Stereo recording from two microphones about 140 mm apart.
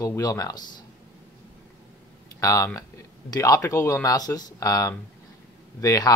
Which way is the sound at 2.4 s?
25° left (ahead or behind).